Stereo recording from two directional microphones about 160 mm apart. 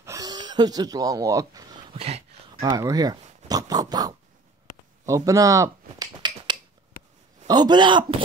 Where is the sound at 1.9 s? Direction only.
40° right (ahead or behind).